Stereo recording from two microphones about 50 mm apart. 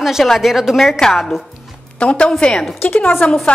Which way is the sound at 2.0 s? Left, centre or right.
Left.